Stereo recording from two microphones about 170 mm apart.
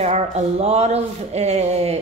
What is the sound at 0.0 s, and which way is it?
Speech, 40° right (ahead or behind).